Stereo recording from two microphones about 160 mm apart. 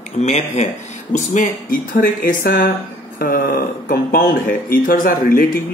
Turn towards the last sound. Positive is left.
turn(degrees=60)  # may be behind; listen again after turning